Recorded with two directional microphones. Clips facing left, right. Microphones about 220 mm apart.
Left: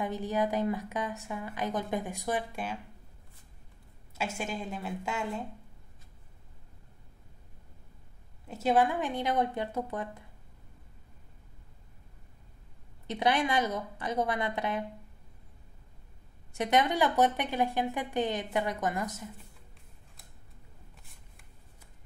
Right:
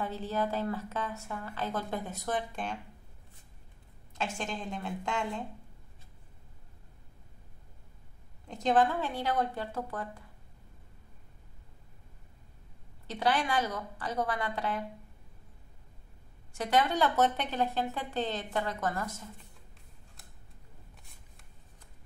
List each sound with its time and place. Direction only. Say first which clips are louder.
0.0 s a woman's voice: left 2 dB; 15° left (ahead or behind)
4.1 s a woman's voice: left 1 dB; 10° left (ahead or behind)
8.5 s a woman's voice: even; 5° left (ahead or behind)
13.0 s a woman's voice: left 2 dB; 20° left (ahead or behind)
16.5 s a woman's voice: left 1 dB; 20° left (ahead or behind)